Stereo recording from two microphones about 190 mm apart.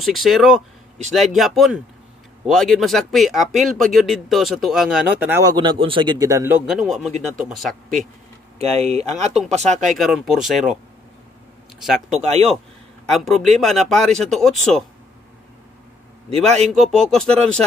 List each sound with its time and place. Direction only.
0.0 s speech: centre (ahead or behind)
6.6 s speech: centre (ahead or behind)
8.5 s speech: 35° right (ahead or behind)
9.8 s speech: centre (ahead or behind)
11.8 s speech: centre (ahead or behind)
12.2 s speech: 35° right (ahead or behind)
13.0 s a man's voice: centre (ahead or behind)
16.3 s speech: 35° right (ahead or behind)
16.7 s speech: centre (ahead or behind)